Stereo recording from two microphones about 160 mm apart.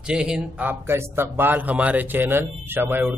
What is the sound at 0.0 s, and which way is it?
A man's voice, 5° right (ahead or behind).